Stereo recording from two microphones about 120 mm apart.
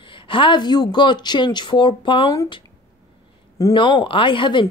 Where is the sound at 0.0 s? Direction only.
45° left (ahead or behind).